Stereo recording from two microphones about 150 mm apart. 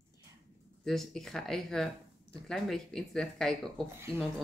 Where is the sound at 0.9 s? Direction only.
Centre (ahead or behind).